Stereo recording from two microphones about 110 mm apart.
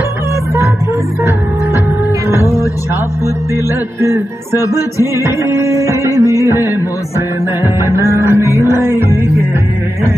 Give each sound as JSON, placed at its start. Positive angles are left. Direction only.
{"t": 2.4, "sound": "music", "side_deg": 30}
{"t": 4.6, "sound": "music", "side_deg": 30}
{"t": 5.1, "sound": "music", "side_deg": -25}
{"t": 6.0, "sound": "music", "side_deg": 25}
{"t": 6.6, "sound": "music", "side_deg": -20}